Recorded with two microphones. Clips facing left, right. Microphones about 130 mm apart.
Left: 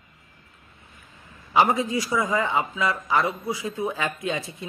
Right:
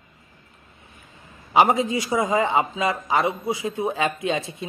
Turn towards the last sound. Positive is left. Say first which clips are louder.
# right 3 dB
turn(degrees=-20)  # may be behind; listen again after turning